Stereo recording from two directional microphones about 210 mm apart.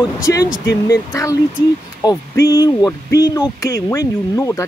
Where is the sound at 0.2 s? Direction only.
15° left (ahead or behind).